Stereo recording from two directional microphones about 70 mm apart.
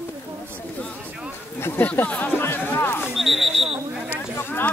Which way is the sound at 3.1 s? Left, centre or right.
Centre.